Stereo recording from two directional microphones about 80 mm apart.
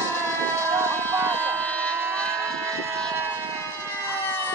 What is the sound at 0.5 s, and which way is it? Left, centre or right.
Vehicle, right.